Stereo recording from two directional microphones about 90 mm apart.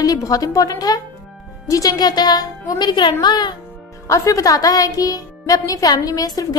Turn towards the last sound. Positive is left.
turn(degrees=40)  # may be behind; listen again after turning